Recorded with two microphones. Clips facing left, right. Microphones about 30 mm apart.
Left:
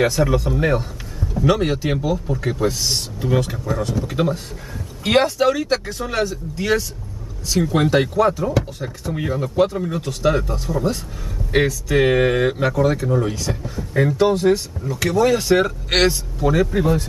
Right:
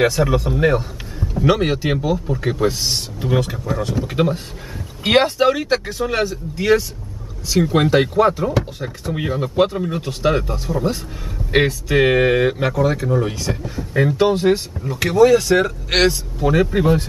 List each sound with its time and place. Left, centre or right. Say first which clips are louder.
0.0 s speech: right 1 dB; centre
5.9 s speech: right 2 dB; centre
8.1 s speech: right 2 dB; right
8.5 s speech: right 1 dB; centre
12.0 s speech: right 2 dB; centre
15.1 s speech: right 4 dB; centre
16.3 s speech: right 1 dB; centre